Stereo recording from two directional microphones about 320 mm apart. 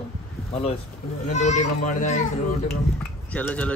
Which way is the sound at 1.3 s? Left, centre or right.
Left.